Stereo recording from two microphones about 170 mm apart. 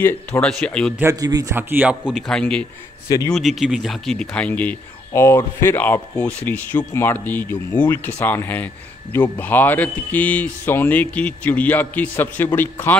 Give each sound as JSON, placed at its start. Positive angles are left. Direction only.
{"t": 0.0, "sound": "speech", "side_deg": 5}
{"t": 0.9, "sound": "speech", "side_deg": -20}
{"t": 3.1, "sound": "a man's voice", "side_deg": 20}
{"t": 3.3, "sound": "speech", "side_deg": 0}